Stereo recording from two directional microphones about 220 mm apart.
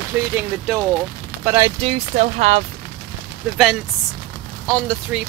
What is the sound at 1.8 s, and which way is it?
Speech, 30° right (ahead or behind).